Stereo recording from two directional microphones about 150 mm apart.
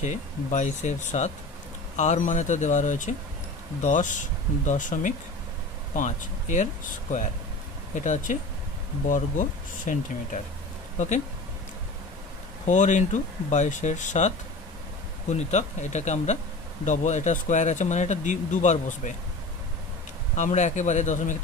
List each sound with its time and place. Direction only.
0.0 s speech: 55° left (ahead or behind)
12.6 s speech: 55° left (ahead or behind)
20.3 s speech: 55° left (ahead or behind)